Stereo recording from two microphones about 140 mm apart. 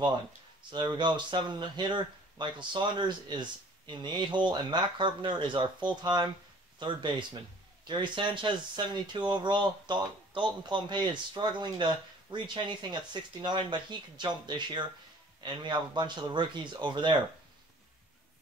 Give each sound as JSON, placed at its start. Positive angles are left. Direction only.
{"t": 0.7, "sound": "speech", "side_deg": -35}